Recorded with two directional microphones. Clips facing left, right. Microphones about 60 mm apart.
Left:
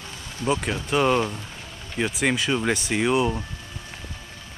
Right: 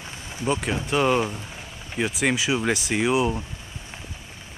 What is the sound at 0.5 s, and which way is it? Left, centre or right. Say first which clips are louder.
Speech: even; centre.